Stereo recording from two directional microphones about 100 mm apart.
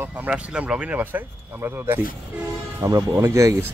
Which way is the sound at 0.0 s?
15° right (ahead or behind).